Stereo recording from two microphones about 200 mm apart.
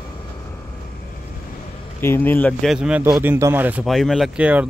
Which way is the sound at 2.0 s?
10° left (ahead or behind).